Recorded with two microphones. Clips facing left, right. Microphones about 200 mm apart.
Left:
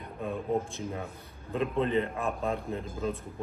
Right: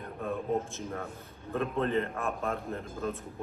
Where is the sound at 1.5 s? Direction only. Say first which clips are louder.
Left 2 dB; 15° left (ahead or behind).